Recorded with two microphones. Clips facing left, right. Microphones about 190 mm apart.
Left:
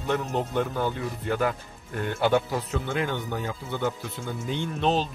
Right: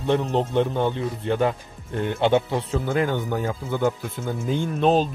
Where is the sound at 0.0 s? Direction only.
30° right (ahead or behind).